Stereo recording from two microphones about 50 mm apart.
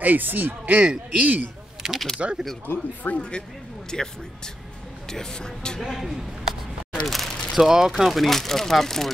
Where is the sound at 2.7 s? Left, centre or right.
Left.